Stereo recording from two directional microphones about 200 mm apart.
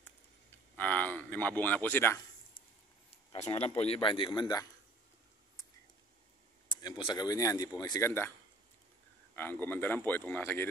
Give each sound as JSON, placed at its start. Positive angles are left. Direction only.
{"t": 0.7, "sound": "speech", "side_deg": 10}
{"t": 3.5, "sound": "speech", "side_deg": 30}
{"t": 6.7, "sound": "speech", "side_deg": 20}
{"t": 9.3, "sound": "speech", "side_deg": 10}